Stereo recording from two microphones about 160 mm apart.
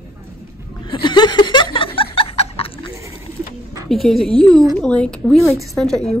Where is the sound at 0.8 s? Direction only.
30° left (ahead or behind).